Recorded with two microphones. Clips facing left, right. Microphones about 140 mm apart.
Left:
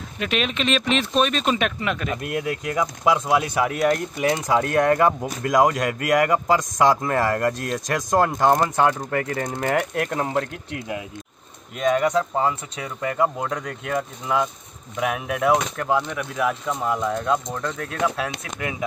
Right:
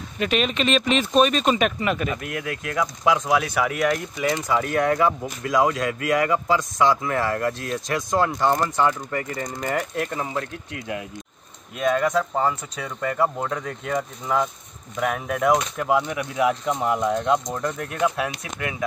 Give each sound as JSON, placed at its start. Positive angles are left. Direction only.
{"t": 0.2, "sound": "speech", "side_deg": 0}
{"t": 3.3, "sound": "speech", "side_deg": 25}
{"t": 3.8, "sound": "speech", "side_deg": 5}
{"t": 5.0, "sound": "a man's voice", "side_deg": 45}
{"t": 11.9, "sound": "speech", "side_deg": 10}
{"t": 18.6, "sound": "speech", "side_deg": 15}